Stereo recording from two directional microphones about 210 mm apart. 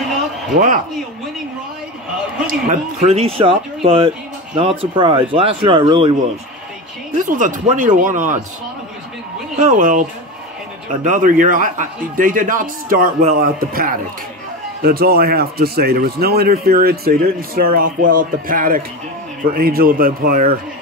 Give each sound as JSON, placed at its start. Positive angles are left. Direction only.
{"t": 0.5, "sound": "a man's voice", "side_deg": -40}
{"t": 2.4, "sound": "a man's voice", "side_deg": -35}
{"t": 7.2, "sound": "a man's voice", "side_deg": -40}
{"t": 9.6, "sound": "a man's voice", "side_deg": -40}